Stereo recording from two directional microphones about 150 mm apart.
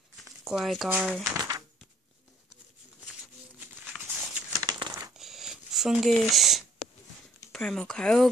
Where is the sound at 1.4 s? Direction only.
25° right (ahead or behind).